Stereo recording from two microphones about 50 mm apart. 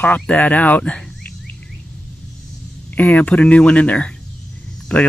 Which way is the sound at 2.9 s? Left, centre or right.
Left.